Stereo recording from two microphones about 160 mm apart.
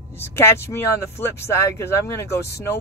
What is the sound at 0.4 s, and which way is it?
Speech, 15° left (ahead or behind).